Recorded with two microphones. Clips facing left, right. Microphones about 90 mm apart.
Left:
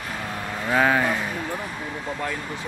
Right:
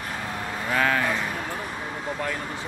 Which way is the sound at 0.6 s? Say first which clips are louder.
Left 4 dB; 15° left (ahead or behind).